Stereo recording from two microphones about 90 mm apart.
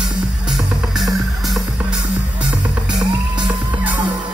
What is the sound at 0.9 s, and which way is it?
Music, centre (ahead or behind).